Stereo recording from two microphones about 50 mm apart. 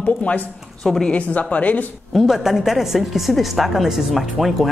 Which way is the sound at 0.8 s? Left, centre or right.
Centre.